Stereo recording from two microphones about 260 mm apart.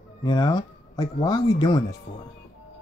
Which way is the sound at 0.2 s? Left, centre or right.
Centre.